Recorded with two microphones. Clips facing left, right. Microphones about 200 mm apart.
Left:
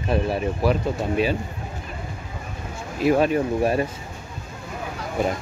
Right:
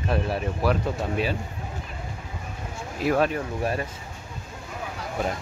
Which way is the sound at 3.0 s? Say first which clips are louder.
Left 4 dB; 5° left (ahead or behind).